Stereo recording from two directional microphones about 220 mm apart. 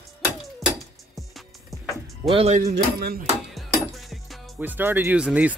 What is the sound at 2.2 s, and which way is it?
Speech, 30° right (ahead or behind).